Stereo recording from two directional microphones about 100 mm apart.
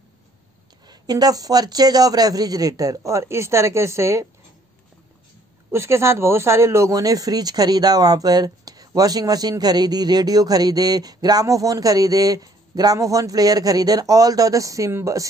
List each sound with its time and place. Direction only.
0.8 s speech: 40° right (ahead or behind)
5.7 s speech: 25° right (ahead or behind)